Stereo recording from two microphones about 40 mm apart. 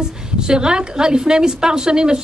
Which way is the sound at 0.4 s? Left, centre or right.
Centre.